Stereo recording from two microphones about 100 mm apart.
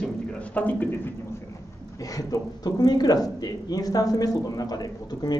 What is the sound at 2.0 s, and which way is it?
A man's voice, 35° left (ahead or behind).